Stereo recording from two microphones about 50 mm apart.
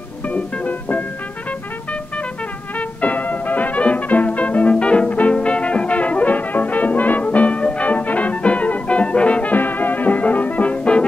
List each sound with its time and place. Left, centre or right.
0.3 s music: left
3.0 s music: left